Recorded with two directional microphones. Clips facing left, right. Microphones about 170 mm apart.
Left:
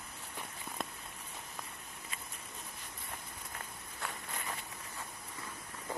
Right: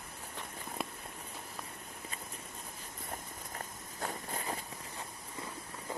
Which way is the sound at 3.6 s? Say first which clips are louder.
Right 4 dB; 35° right (ahead or behind).